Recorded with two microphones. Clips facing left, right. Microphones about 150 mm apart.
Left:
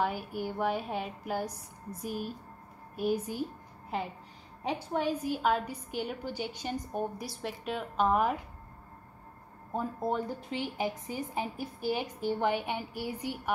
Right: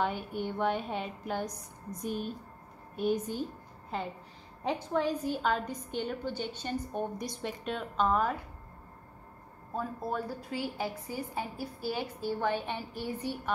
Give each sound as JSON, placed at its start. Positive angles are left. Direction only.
{"t": 0.0, "sound": "a woman's voice", "side_deg": 5}
{"t": 5.2, "sound": "a woman's voice", "side_deg": 10}
{"t": 9.8, "sound": "a woman's voice", "side_deg": 20}